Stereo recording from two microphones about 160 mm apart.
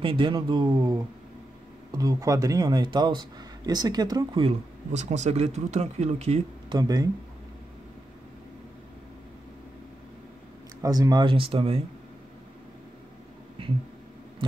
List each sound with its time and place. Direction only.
0.0 s speech: 30° right (ahead or behind)
5.0 s speech: 45° right (ahead or behind)
6.7 s speech: 25° right (ahead or behind)
10.8 s speech: 25° right (ahead or behind)